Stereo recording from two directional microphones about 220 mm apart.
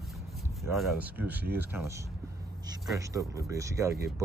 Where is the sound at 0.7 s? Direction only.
5° right (ahead or behind).